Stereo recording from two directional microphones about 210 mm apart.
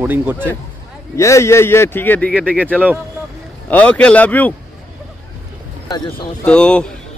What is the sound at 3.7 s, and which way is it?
Speech, 5° left (ahead or behind).